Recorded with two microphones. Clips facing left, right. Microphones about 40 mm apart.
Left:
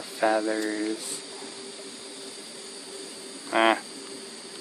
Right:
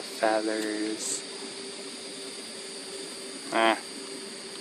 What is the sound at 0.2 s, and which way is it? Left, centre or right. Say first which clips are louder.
Speech: left 2 dB; centre.